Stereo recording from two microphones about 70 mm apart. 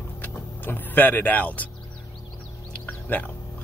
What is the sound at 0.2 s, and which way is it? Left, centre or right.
Speech, left.